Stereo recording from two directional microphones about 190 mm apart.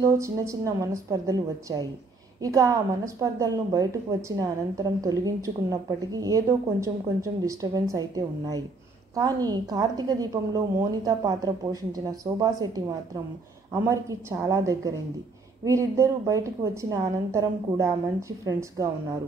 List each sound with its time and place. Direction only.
0.0 s a woman's voice: 15° right (ahead or behind)